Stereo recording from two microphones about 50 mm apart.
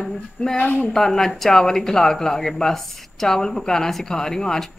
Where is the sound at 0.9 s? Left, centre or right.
Centre.